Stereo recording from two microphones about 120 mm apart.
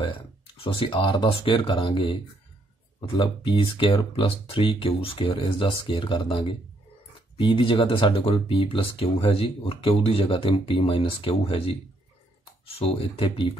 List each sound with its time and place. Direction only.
0.7 s speech: 45° left (ahead or behind)
3.2 s speech: 45° left (ahead or behind)
12.7 s speech: 55° left (ahead or behind)